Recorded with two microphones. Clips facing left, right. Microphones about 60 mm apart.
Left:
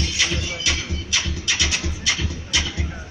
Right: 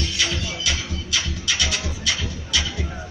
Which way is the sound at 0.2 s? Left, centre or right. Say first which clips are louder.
Left 1 dB; centre.